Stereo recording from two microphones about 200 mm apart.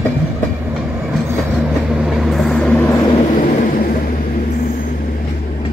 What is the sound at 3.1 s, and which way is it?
Vehicle, 40° left (ahead or behind).